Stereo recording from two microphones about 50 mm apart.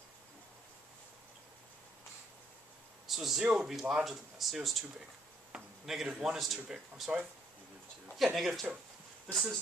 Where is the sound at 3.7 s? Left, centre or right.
Centre.